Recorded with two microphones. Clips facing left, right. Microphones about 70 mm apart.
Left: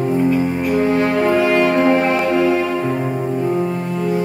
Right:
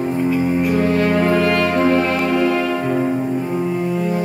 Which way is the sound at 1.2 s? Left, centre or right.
Centre.